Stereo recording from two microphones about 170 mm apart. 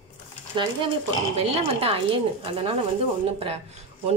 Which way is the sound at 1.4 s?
35° right (ahead or behind).